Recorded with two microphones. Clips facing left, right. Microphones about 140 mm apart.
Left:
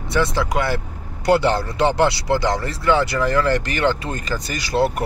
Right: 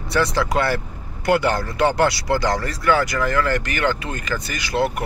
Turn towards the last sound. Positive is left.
turn(degrees=35)  # may be behind; listen again after turning